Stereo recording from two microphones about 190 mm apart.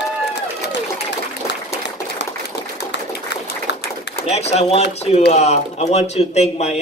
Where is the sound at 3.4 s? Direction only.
60° left (ahead or behind).